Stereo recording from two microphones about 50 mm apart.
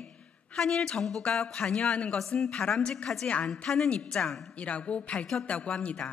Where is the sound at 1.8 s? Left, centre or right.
Left; by 3.3 s centre.